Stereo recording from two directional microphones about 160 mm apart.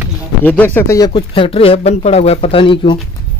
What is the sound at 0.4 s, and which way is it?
Speech, 10° left (ahead or behind).